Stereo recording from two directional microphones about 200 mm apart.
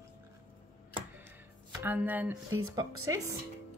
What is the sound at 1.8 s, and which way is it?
Speech, 10° right (ahead or behind).